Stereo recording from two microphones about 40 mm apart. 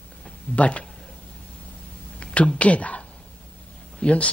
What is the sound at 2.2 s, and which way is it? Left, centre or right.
Speech, left.